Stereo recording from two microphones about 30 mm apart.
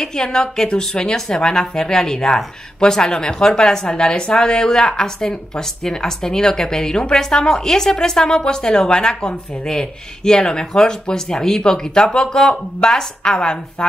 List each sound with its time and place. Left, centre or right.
0.0 s a woman's voice: left